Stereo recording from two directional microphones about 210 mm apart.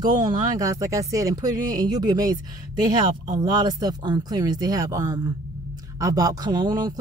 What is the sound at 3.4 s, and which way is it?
A woman's voice, 20° right (ahead or behind).